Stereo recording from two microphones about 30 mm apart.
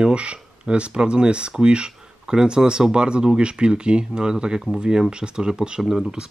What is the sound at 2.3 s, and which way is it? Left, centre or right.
Speech, right.